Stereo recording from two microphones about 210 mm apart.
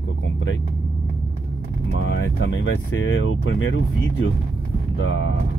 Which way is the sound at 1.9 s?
70° left (ahead or behind).